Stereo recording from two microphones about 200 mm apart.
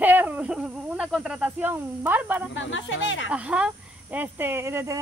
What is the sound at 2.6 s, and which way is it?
Speech, 70° left (ahead or behind).